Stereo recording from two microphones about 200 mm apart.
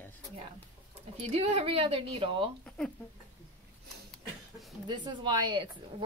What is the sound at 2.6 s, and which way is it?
Speech, 5° left (ahead or behind).